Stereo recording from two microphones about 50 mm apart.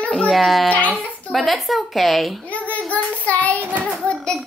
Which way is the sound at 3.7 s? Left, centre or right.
Right.